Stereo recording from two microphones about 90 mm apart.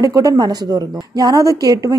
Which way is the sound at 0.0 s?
40° right (ahead or behind).